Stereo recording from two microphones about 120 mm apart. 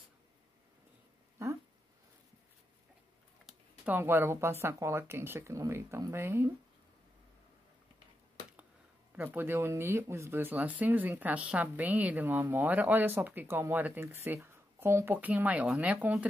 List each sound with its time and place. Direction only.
3.8 s speech: 15° right (ahead or behind)
9.1 s speech: 15° right (ahead or behind)